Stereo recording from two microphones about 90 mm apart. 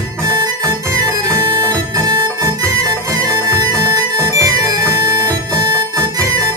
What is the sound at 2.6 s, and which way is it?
Music, 40° right (ahead or behind).